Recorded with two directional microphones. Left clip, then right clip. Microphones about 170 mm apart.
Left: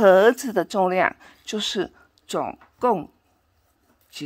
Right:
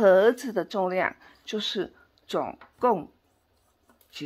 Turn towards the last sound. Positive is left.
turn(degrees=20)  # may be behind; listen again after turning